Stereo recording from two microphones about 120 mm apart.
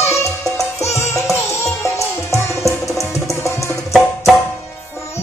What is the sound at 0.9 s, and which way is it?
Music, 25° left (ahead or behind).